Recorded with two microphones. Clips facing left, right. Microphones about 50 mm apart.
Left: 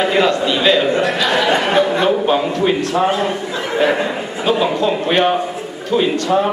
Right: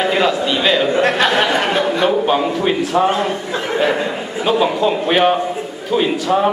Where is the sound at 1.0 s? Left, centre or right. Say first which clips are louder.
Right 3 dB; right.